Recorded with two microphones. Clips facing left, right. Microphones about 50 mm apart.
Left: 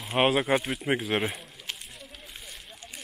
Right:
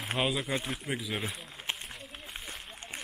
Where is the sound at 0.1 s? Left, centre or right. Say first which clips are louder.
Left 8 dB; left.